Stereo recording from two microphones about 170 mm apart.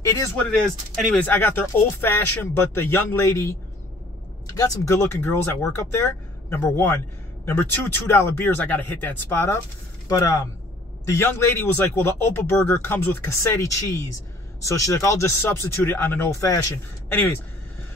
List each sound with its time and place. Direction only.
0.1 s speech: 15° left (ahead or behind)
0.5 s speech: centre (ahead or behind)
4.6 s speech: 20° left (ahead or behind)
11.1 s speech: 15° left (ahead or behind)